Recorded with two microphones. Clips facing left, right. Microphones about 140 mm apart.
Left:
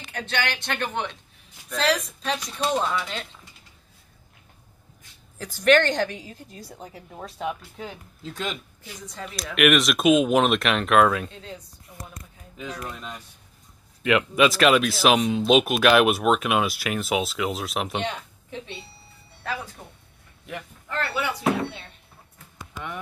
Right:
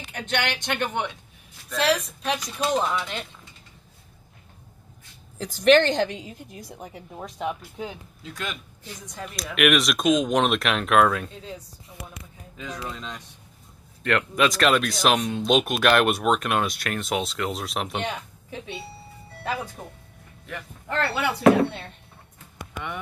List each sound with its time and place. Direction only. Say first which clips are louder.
0.1 s a woman's voice: right 1 dB; 15° right (ahead or behind)
5.4 s a woman's voice: right 2 dB; 15° right (ahead or behind)
7.2 s speech: even; centre (ahead or behind)
9.0 s a woman's voice: left 1 dB; 10° right (ahead or behind)
9.3 s speech: left 1 dB; centre (ahead or behind)
12.5 s speech: even; 10° left (ahead or behind); by 18.8 s 5° right (ahead or behind)
21.4 s speech: right 11 dB; 55° right (ahead or behind)